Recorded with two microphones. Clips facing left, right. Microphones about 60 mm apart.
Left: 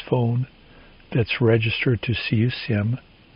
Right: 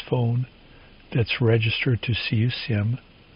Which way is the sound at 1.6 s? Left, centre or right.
Left.